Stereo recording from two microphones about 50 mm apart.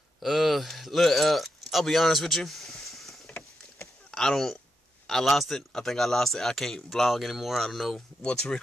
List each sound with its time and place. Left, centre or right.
0.2 s speech: centre
8.2 s speech: centre